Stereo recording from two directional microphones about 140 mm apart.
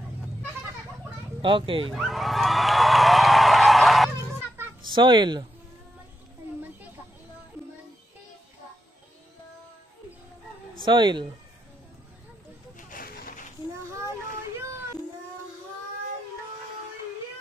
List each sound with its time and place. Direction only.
1.4 s speech: 40° right (ahead or behind)
2.0 s a sound: centre (ahead or behind)
4.8 s speech: 35° right (ahead or behind)
10.9 s speech: 35° right (ahead or behind)
12.7 s a sound: 85° left
13.7 s child singing: 20° right (ahead or behind)